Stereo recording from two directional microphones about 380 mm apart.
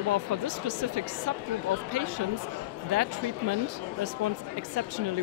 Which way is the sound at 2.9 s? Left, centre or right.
Right.